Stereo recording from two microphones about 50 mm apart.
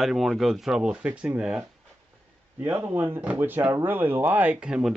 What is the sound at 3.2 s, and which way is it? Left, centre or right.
Speech, right.